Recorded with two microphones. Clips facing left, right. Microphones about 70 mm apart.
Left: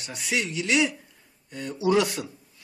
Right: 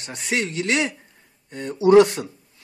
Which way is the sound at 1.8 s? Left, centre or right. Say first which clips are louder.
Right 9 dB; right.